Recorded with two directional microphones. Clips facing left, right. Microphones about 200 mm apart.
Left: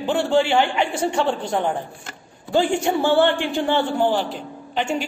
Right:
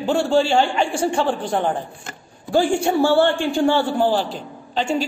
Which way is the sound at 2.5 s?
20° left (ahead or behind).